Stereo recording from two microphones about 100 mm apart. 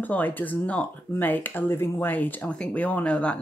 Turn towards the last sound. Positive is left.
turn(degrees=10)  # may be behind; listen again after turning